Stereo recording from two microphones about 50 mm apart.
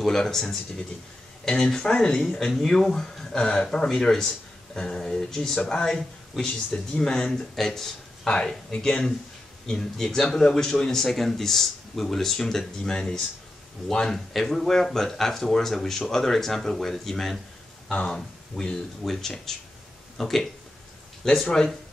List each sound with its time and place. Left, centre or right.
0.0 s speech: centre